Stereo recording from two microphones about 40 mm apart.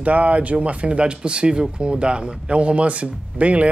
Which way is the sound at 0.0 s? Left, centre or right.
Right.